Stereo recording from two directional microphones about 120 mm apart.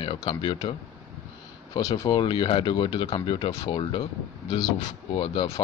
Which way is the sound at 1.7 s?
30° left (ahead or behind).